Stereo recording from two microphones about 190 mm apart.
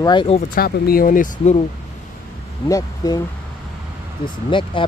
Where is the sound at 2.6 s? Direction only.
20° left (ahead or behind).